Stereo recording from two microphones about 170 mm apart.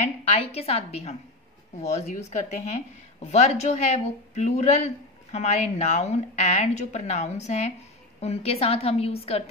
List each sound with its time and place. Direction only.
0.0 s a woman's voice: 40° left (ahead or behind)